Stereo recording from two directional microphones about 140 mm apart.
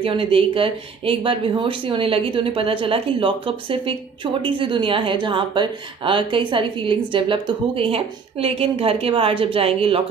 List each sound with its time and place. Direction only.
0.0 s speech: 40° right (ahead or behind)